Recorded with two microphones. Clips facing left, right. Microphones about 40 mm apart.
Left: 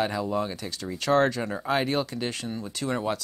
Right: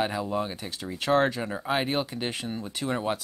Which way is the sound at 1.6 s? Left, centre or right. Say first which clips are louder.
Left 1 dB; centre.